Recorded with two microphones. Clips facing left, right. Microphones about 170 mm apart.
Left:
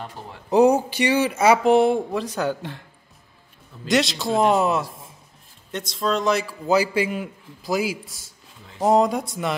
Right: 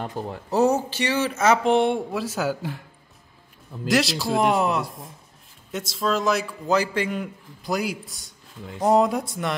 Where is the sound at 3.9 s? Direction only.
Centre (ahead or behind).